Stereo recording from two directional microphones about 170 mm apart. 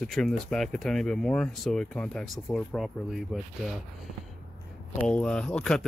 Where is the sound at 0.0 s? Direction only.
Centre (ahead or behind).